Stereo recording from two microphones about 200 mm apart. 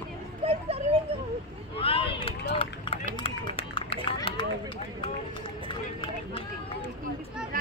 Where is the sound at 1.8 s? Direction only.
30° left (ahead or behind).